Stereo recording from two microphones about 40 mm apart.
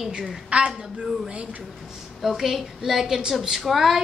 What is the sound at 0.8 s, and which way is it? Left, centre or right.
Speech, right.